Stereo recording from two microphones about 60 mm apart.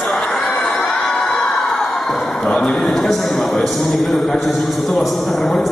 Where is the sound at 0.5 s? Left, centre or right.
Centre.